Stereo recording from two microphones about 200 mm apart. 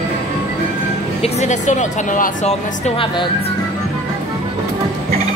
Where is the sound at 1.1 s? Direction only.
30° left (ahead or behind).